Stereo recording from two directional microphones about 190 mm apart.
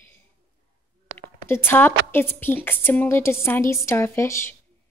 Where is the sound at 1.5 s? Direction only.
10° left (ahead or behind).